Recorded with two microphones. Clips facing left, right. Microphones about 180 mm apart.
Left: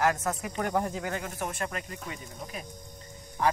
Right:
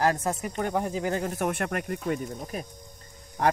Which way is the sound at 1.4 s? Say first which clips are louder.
Right 6 dB; 60° right (ahead or behind).